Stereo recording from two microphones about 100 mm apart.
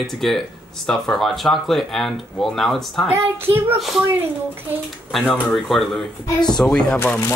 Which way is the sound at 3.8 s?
Centre (ahead or behind).